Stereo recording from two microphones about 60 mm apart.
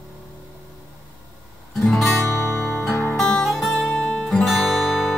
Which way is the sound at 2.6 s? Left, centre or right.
Centre.